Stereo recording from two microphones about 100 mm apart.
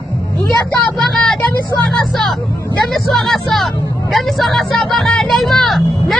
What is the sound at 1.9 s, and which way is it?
Speech, 5° left (ahead or behind).